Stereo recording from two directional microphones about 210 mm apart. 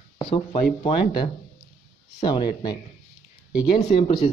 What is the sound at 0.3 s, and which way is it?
Speech, 30° left (ahead or behind).